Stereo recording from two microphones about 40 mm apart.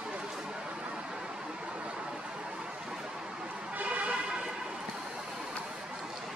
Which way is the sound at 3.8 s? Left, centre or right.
Right.